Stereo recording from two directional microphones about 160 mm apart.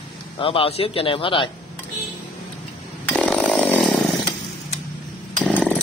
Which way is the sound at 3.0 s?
5° left (ahead or behind).